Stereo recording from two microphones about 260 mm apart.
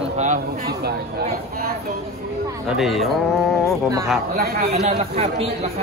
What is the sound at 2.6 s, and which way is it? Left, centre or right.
A man's voice, centre.